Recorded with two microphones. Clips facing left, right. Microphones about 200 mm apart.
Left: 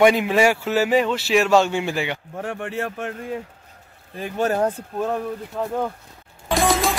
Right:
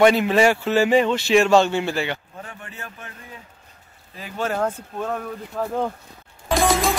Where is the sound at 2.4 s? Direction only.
75° left (ahead or behind).